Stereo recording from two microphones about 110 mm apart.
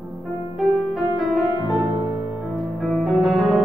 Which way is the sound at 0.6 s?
Centre (ahead or behind).